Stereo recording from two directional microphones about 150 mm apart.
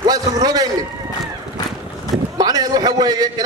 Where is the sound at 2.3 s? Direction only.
25° right (ahead or behind).